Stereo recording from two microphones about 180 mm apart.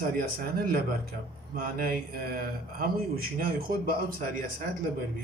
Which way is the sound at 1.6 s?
55° right (ahead or behind).